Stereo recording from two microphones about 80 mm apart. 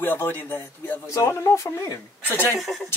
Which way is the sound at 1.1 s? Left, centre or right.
Left.